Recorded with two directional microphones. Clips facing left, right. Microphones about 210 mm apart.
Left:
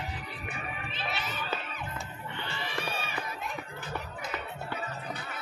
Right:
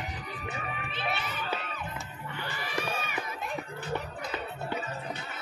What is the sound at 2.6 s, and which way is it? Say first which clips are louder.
Run: right 2 dB; 30° left (ahead or behind).